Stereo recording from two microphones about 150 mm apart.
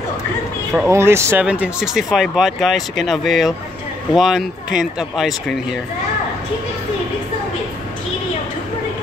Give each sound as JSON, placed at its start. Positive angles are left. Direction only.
{"t": 0.8, "sound": "speech", "side_deg": -15}